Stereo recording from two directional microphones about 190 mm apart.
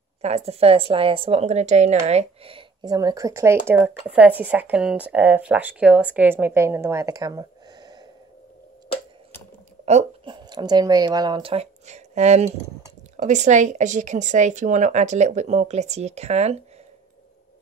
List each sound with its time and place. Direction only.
0.2 s a woman's voice: 35° right (ahead or behind)
10.2 s a woman's voice: 25° right (ahead or behind)